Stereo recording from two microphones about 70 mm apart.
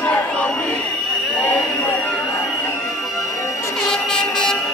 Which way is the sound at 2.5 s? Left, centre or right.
Left.